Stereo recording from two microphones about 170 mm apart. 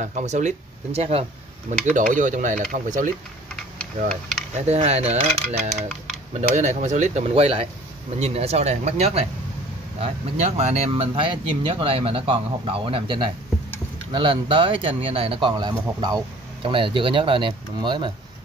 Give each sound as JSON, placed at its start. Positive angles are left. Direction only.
{"t": 0.0, "sound": "speech", "side_deg": -45}
{"t": 4.6, "sound": "speech", "side_deg": -40}
{"t": 6.3, "sound": "speech", "side_deg": -40}